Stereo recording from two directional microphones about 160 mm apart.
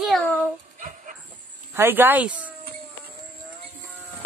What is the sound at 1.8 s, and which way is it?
Speech, 15° right (ahead or behind).